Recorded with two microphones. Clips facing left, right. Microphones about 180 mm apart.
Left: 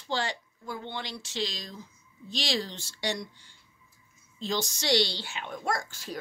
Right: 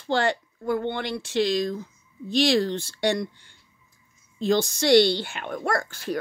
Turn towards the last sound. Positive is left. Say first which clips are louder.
# right 6 dB
turn(degrees=-65)  # may be behind; listen again after turning